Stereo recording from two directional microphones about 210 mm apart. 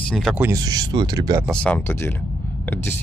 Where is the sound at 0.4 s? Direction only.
15° right (ahead or behind).